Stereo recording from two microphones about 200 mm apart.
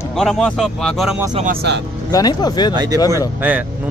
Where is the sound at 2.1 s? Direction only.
20° left (ahead or behind).